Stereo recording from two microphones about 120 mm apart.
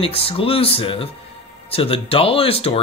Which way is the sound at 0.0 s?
50° left (ahead or behind).